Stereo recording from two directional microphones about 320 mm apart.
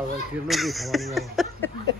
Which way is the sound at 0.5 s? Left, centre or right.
Centre.